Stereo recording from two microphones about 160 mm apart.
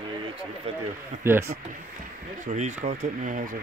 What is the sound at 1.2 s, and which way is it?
Speech, 15° right (ahead or behind).